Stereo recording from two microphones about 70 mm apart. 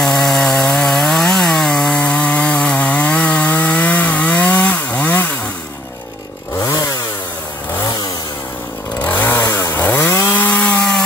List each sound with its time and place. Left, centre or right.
0.0 s chainsaw: centre; by 5.3 s left
6.6 s chainsaw: left
9.0 s chainsaw: left
10.0 s chainsaw: left
10.3 s wood: left